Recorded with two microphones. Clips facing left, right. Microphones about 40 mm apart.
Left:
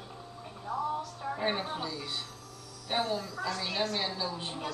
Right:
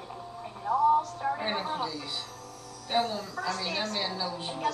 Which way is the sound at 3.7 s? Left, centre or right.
Left.